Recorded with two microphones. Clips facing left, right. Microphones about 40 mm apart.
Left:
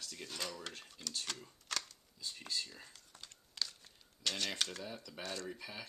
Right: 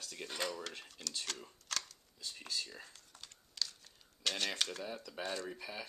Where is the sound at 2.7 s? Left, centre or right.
Centre.